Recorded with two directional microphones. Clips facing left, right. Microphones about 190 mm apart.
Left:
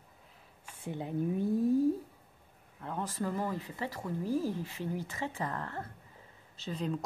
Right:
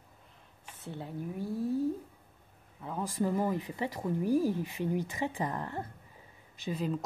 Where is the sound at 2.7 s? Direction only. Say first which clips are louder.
Right 3 dB; 5° right (ahead or behind).